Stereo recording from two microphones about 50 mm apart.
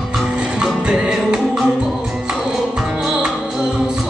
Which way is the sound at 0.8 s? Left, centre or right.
Centre.